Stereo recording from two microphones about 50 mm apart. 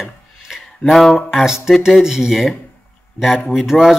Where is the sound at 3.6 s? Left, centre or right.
Centre.